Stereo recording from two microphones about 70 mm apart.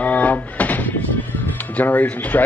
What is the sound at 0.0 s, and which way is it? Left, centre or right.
Music, left.